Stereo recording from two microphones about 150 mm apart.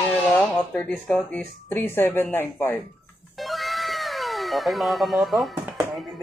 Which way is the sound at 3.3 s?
Centre (ahead or behind).